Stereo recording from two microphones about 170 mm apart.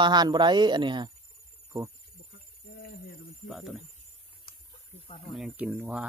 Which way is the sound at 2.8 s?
55° left (ahead or behind).